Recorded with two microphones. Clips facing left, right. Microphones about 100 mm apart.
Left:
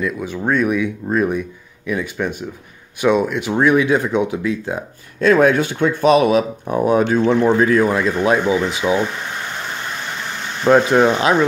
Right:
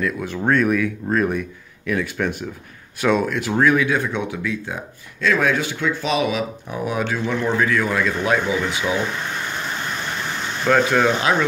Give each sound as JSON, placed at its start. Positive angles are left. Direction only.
{"t": 0.0, "sound": "speech", "side_deg": 10}
{"t": 3.5, "sound": "speech", "side_deg": 25}
{"t": 10.6, "sound": "speech", "side_deg": 25}